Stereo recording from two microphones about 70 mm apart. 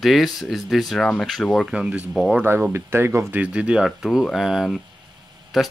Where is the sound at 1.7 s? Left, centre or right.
Centre.